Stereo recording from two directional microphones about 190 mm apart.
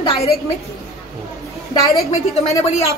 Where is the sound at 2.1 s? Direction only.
30° left (ahead or behind).